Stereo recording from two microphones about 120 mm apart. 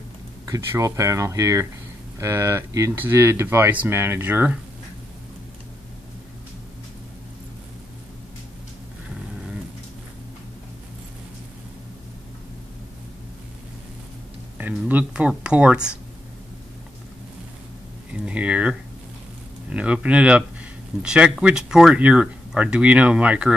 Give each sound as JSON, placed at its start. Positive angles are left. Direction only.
{"t": 0.5, "sound": "speech", "side_deg": -25}
{"t": 14.6, "sound": "speech", "side_deg": -15}
{"t": 18.2, "sound": "a sound", "side_deg": -10}
{"t": 19.7, "sound": "speech", "side_deg": -10}